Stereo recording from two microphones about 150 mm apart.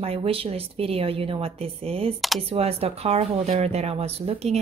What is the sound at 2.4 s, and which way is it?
Speech, 40° right (ahead or behind).